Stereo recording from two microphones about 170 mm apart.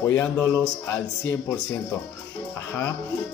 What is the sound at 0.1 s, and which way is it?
Speech, 15° left (ahead or behind).